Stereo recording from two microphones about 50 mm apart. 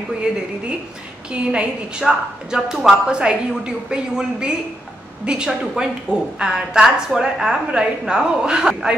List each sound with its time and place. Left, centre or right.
0.3 s a woman's voice: centre